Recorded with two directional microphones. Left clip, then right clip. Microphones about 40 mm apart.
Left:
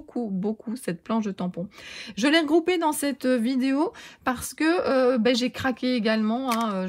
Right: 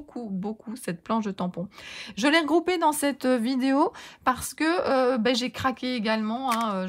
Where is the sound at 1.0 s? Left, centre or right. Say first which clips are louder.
Right 1 dB; right.